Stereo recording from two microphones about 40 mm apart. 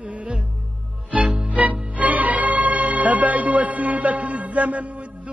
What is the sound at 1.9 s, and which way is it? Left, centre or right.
Music, right.